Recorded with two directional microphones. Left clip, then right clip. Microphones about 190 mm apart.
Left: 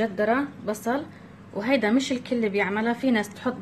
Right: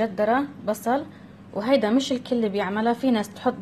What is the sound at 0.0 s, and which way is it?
A woman's voice, 10° right (ahead or behind).